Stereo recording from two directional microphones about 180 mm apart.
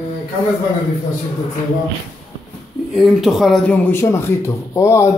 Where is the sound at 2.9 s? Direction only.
Centre (ahead or behind).